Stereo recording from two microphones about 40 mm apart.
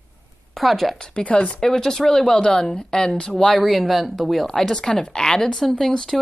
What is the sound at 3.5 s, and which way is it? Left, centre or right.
A woman's voice, centre.